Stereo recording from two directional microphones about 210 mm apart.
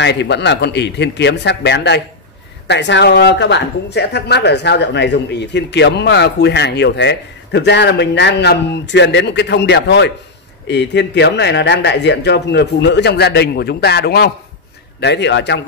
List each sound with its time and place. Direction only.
0.0 s speech: 55° left (ahead or behind)